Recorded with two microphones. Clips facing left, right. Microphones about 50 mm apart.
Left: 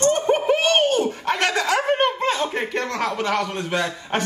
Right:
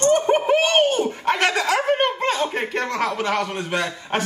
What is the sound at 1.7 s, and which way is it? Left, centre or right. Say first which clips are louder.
A man's voice: even; centre.